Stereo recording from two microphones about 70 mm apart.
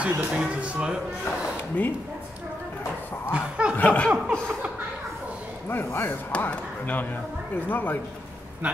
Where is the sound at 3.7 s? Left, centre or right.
Left.